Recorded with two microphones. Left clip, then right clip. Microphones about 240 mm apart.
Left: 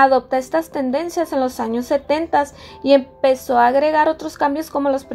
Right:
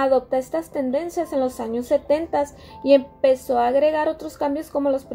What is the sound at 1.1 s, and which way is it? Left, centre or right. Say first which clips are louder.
Speech: left 3 dB; left.